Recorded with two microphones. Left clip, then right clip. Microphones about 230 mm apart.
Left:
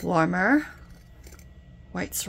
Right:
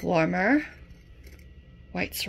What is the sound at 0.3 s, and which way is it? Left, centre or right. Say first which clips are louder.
Speech: left 1 dB; left.